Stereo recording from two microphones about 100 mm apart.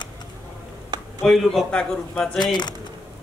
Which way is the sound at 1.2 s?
5° left (ahead or behind).